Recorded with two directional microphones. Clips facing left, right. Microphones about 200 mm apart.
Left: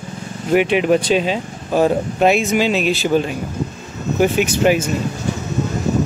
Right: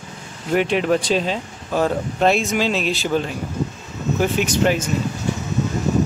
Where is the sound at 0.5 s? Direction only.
5° left (ahead or behind).